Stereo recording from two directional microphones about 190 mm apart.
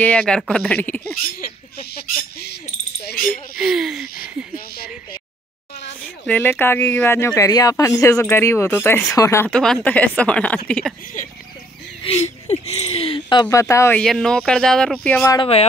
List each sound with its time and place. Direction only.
0.0 s speech: 5° left (ahead or behind)
1.4 s speech: 55° left (ahead or behind)
3.2 s speech: centre (ahead or behind)
6.2 s speech: 10° left (ahead or behind)
11.2 s speech: 45° left (ahead or behind); by 14.0 s 15° left (ahead or behind)
14.0 s speech: centre (ahead or behind)
15.3 s speech: 30° left (ahead or behind)